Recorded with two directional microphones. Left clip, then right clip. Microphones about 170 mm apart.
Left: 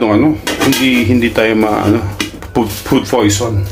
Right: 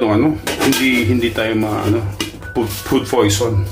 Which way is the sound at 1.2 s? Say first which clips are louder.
Left 6 dB; 40° left (ahead or behind).